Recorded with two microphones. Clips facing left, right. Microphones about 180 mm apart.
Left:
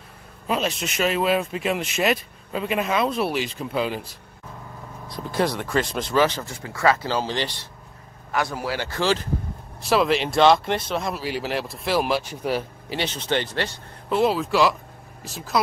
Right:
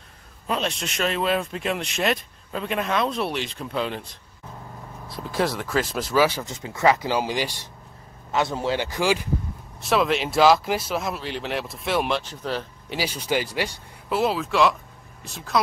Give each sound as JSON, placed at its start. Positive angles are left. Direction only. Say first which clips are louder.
{"t": 0.5, "sound": "speech", "louder": "left 2 dB", "side_deg": 5}
{"t": 6.5, "sound": "speech", "louder": "right 1 dB", "side_deg": -20}
{"t": 8.3, "sound": "speech", "louder": "right 2 dB", "side_deg": -25}
{"t": 9.8, "sound": "speech", "louder": "left 2 dB", "side_deg": 0}
{"t": 12.9, "sound": "speech", "louder": "even", "side_deg": -10}